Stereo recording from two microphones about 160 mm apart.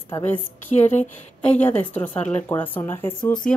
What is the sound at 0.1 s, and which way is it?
Speech, 10° left (ahead or behind).